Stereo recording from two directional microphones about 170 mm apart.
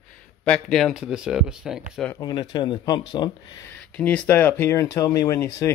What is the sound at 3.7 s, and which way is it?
Speech, 10° left (ahead or behind).